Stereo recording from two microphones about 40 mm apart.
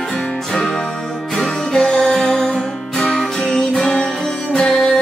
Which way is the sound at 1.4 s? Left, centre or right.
Centre.